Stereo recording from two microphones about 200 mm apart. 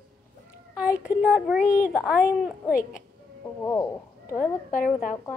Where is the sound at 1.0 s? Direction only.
5° right (ahead or behind).